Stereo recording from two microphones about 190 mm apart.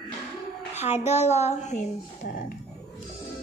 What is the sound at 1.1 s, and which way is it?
Speech, 35° left (ahead or behind).